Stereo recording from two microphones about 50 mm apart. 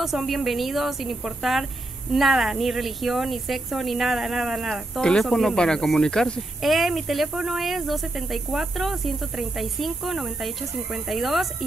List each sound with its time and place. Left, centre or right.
0.0 s speech: centre
5.6 s speech: centre
6.6 s speech: centre